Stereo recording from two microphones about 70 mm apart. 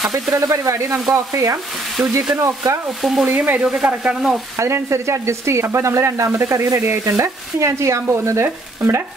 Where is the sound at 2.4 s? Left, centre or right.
Right.